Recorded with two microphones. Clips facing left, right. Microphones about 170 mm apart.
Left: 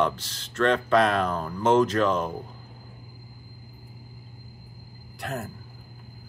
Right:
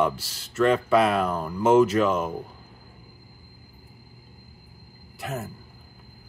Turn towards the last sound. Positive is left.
turn(degrees=0)  # may be behind; listen again after turning